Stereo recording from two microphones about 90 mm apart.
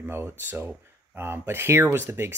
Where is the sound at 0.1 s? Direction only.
25° right (ahead or behind).